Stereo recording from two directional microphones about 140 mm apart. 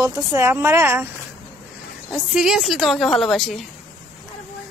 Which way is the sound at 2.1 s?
5° right (ahead or behind).